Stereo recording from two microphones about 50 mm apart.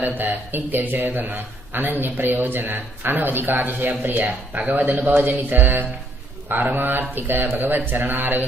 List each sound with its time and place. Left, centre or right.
0.0 s a man's voice: right